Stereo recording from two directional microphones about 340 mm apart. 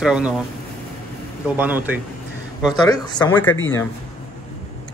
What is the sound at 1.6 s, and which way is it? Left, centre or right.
Speech, centre.